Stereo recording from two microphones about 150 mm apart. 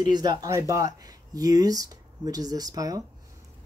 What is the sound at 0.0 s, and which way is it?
Speech, 25° right (ahead or behind).